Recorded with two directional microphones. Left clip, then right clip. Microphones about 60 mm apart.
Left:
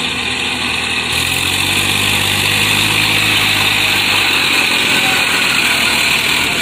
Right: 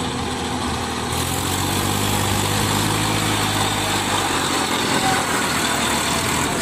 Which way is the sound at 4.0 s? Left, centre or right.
Centre.